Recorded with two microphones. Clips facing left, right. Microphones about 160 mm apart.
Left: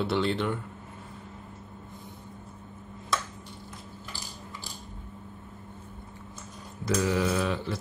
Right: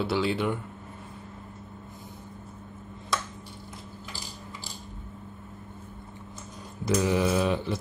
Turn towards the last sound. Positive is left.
turn(degrees=-15)  # may be behind; listen again after turning